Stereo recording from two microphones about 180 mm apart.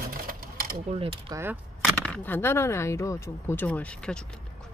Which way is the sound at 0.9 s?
30° right (ahead or behind).